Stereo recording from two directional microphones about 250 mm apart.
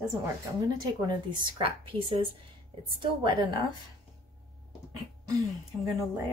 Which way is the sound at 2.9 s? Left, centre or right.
Centre.